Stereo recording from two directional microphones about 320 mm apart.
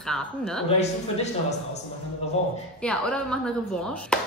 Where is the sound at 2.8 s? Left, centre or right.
Centre.